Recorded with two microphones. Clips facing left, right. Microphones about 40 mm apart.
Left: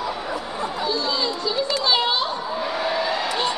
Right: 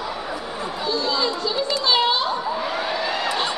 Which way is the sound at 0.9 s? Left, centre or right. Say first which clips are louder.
Right 4 dB; centre.